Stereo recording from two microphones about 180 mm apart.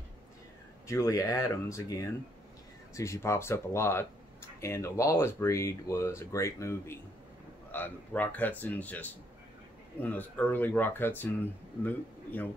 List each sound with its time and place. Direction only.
0.8 s speech: 15° left (ahead or behind)